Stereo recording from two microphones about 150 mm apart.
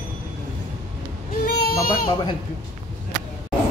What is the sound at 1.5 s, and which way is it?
Baby cry, 90° left.